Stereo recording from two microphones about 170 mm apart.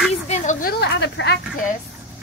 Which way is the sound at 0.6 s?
70° left (ahead or behind).